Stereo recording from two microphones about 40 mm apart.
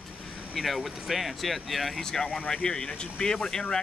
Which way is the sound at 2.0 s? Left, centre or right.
Centre.